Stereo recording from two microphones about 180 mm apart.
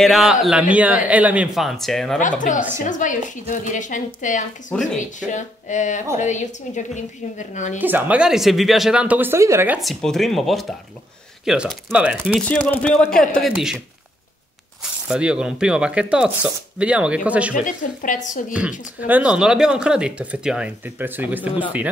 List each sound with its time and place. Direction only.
0.0 s speech: centre (ahead or behind)
2.8 s speech: 45° left (ahead or behind)
7.8 s speech: 10° right (ahead or behind)
9.8 s speech: centre (ahead or behind)
12.4 s speech: 5° left (ahead or behind)
14.8 s speech: 5° right (ahead or behind)
17.6 s speech: 45° left (ahead or behind)
18.9 s speech: 10° right (ahead or behind)